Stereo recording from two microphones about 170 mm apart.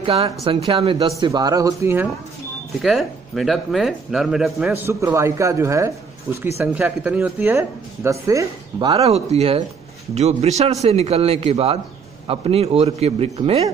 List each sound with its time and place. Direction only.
0.0 s speech: 35° right (ahead or behind); by 2.0 s 15° right (ahead or behind)
2.8 s speech: centre (ahead or behind)
4.8 s speech: 15° right (ahead or behind)
9.0 s a man's voice: 40° right (ahead or behind)